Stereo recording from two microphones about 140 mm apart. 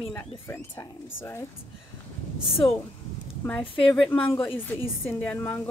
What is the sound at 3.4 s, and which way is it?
A woman's voice, 15° left (ahead or behind).